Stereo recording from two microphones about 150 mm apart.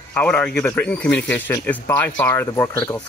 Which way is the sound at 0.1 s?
10° left (ahead or behind).